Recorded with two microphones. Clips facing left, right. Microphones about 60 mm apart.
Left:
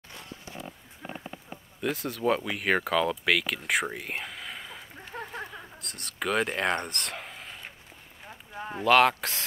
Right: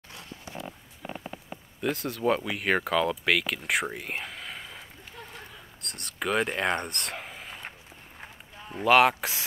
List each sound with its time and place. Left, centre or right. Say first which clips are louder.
1.8 s speech: right 1 dB; centre
5.1 s a sound: left 7 dB; left
5.8 s speech: right 2 dB; centre
8.8 s speech: right 1 dB; centre